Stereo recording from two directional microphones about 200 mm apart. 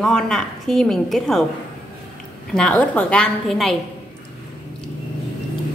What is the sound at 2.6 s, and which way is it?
A woman's voice, 5° left (ahead or behind).